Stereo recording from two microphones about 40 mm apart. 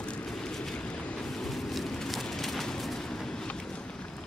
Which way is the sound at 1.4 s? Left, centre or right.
Centre.